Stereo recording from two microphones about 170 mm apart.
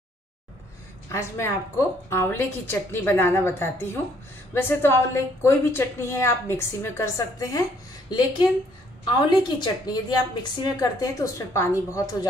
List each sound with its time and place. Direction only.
1.0 s a woman's voice: 15° left (ahead or behind)
9.0 s a woman's voice: 25° left (ahead or behind)